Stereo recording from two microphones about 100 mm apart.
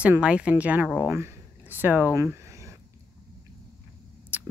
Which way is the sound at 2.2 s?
30° right (ahead or behind).